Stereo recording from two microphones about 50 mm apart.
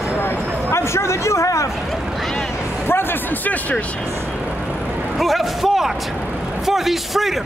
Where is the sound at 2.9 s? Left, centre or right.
Left.